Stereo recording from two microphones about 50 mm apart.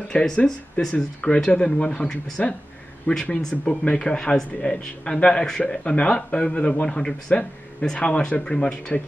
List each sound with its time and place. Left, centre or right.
0.1 s a man's voice: centre